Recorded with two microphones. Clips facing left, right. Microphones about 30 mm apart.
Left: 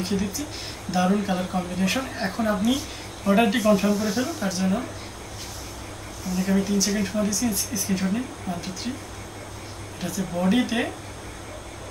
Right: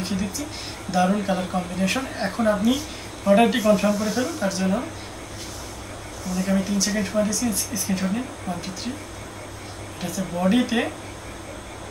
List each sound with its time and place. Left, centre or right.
0.0 s speech: centre
6.2 s speech: centre
9.9 s speech: centre